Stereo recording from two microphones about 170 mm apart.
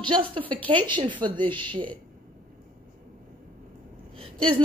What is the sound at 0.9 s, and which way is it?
A man's voice, 25° right (ahead or behind).